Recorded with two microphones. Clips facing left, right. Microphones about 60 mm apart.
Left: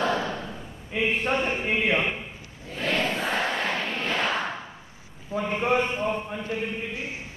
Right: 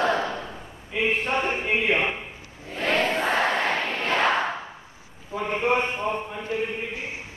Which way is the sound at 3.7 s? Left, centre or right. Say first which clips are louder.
Right 2 dB; centre.